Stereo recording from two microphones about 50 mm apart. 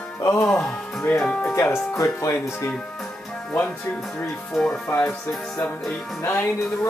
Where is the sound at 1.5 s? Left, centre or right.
Left.